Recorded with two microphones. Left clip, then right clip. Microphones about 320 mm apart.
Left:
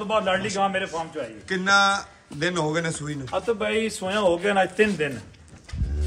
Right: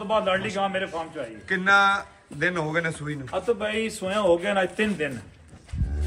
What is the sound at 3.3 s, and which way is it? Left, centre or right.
A man's voice, left.